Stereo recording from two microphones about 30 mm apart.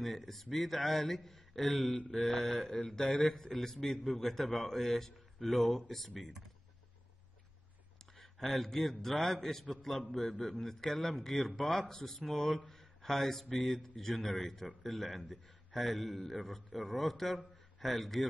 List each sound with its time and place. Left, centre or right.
0.0 s a man's voice: centre
8.0 s a man's voice: centre